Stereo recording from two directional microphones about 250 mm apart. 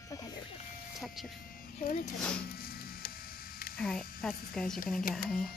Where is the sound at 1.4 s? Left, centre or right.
Left.